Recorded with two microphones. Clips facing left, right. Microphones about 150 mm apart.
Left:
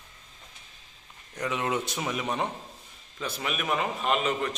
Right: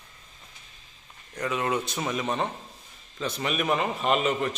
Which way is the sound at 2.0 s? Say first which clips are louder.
Right 2 dB; 10° left (ahead or behind).